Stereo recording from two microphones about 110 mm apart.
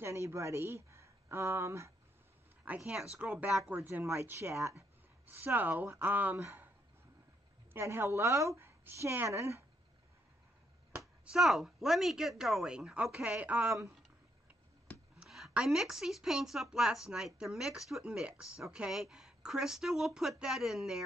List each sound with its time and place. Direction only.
0.0 s speech: 25° right (ahead or behind)
2.8 s a woman's voice: 5° right (ahead or behind); by 6.7 s 20° right (ahead or behind)
7.7 s a woman's voice: 20° right (ahead or behind)
11.2 s speech: centre (ahead or behind)
15.1 s speech: 5° right (ahead or behind)